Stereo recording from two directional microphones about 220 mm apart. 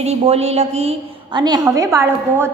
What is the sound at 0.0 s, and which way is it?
A woman's voice, 30° right (ahead or behind).